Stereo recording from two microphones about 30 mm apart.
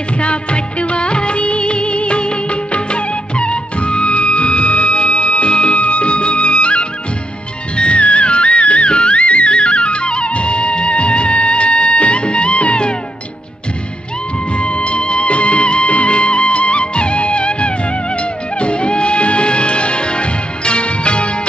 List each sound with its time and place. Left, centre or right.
0.2 s music of bollywood: left
5.8 s music: left
14.6 s music: left